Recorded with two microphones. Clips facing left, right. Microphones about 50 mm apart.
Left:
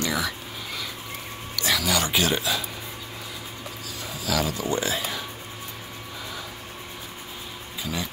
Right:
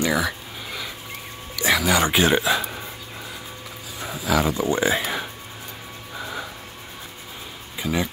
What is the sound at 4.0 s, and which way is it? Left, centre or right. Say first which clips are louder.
Speech: right 5 dB; right.